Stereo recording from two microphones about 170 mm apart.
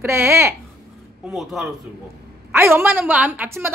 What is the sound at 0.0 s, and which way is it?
Speech, 15° right (ahead or behind).